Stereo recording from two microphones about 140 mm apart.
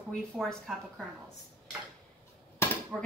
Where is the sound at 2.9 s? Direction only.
Centre (ahead or behind).